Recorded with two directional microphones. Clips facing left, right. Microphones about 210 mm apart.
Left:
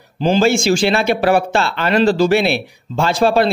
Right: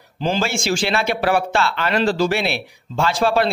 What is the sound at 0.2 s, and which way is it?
Speech, 20° left (ahead or behind).